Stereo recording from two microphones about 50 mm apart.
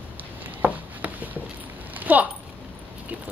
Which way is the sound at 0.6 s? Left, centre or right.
Right.